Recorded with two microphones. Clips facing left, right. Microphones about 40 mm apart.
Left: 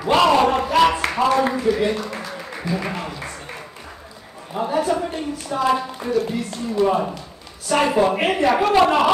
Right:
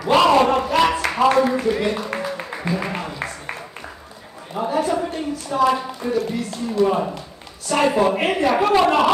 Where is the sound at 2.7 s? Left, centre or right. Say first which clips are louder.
Right 1 dB; right.